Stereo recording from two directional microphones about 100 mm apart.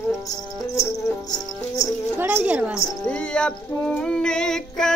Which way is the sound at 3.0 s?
10° left (ahead or behind).